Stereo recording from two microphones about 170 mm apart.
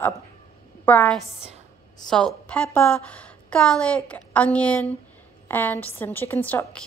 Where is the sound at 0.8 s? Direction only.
10° left (ahead or behind).